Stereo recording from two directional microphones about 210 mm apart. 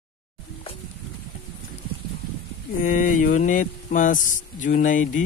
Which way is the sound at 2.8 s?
40° left (ahead or behind).